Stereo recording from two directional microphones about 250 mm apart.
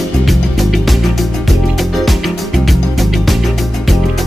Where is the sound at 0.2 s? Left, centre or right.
Centre.